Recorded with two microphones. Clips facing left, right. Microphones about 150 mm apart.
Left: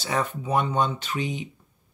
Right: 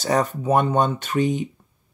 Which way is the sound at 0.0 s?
40° right (ahead or behind).